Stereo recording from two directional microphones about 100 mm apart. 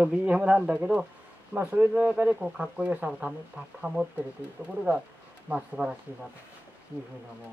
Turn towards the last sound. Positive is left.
turn(degrees=-10)  # may be behind; listen again after turning